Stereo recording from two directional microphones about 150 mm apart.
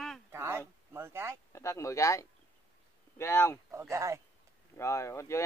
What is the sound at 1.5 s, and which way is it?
Speech, 20° left (ahead or behind).